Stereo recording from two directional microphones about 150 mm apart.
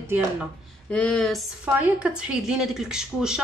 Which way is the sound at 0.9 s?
5° left (ahead or behind).